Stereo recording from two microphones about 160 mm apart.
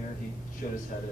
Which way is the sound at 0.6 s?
55° left (ahead or behind).